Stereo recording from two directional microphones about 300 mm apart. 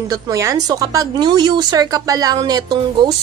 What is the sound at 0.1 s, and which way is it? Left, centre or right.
A woman's voice, centre.